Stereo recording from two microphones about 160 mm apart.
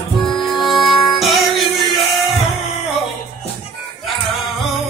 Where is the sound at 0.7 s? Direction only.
Centre (ahead or behind).